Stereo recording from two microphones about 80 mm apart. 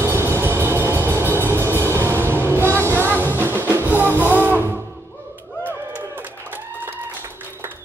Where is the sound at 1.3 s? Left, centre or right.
Right.